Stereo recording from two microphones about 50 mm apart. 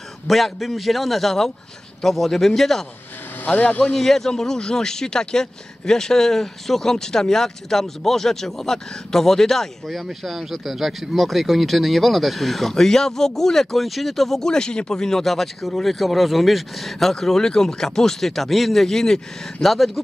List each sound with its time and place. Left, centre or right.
0.3 s a man's voice: centre
3.4 s speech: left
3.8 s speech: centre